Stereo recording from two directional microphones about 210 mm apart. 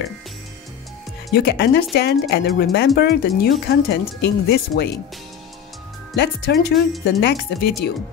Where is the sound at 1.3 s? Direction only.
50° left (ahead or behind).